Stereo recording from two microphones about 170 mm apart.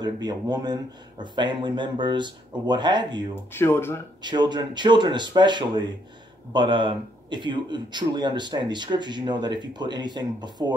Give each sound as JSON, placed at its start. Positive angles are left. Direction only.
{"t": 0.0, "sound": "speech", "side_deg": -25}
{"t": 3.3, "sound": "speech", "side_deg": 15}
{"t": 4.2, "sound": "speech", "side_deg": -25}